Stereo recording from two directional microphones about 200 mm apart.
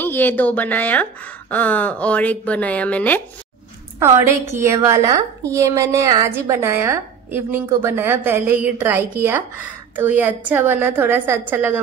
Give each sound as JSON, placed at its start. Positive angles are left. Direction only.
{"t": 0.0, "sound": "speech", "side_deg": 10}
{"t": 4.0, "sound": "a woman's voice", "side_deg": -10}